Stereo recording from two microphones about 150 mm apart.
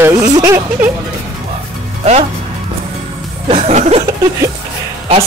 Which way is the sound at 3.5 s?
50° right (ahead or behind).